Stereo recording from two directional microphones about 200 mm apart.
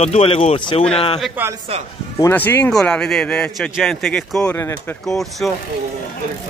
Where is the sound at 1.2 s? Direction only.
10° right (ahead or behind).